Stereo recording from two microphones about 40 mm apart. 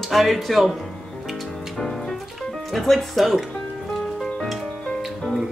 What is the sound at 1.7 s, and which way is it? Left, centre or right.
Music, centre.